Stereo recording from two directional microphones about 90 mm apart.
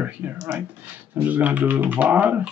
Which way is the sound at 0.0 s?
15° right (ahead or behind).